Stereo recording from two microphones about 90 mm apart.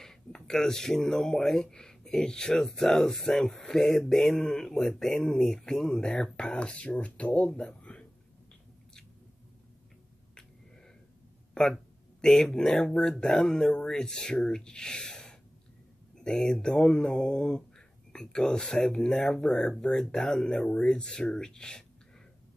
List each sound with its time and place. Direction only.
0.0 s speech: 5° left (ahead or behind)
12.2 s speech: 5° left (ahead or behind)